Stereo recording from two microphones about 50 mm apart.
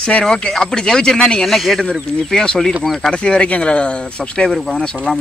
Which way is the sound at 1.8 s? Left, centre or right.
Centre.